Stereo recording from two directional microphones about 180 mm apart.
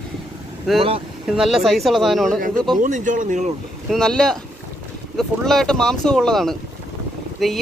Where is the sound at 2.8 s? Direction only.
45° right (ahead or behind).